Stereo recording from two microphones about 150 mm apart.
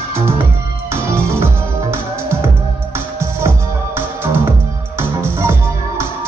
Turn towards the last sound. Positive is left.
turn(degrees=-15)  # may be behind; listen again after turning